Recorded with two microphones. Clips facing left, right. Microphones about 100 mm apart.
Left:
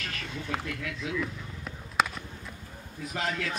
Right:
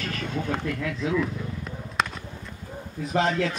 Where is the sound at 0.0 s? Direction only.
40° right (ahead or behind).